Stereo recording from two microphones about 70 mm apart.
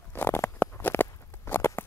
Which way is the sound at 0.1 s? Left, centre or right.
Left.